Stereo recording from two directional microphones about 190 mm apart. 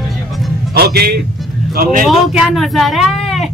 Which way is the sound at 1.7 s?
50° right (ahead or behind).